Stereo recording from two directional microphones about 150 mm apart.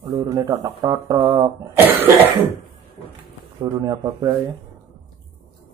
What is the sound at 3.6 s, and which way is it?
Speech, 25° right (ahead or behind).